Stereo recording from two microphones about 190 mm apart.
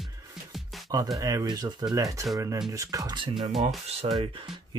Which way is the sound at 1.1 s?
20° right (ahead or behind).